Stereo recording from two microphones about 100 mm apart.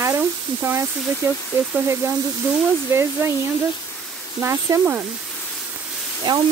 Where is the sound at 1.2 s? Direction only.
30° right (ahead or behind).